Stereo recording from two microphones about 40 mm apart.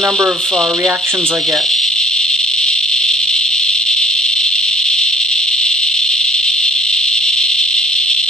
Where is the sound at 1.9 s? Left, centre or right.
Centre.